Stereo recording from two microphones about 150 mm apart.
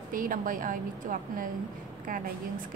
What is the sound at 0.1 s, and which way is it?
A woman's voice, 65° right (ahead or behind).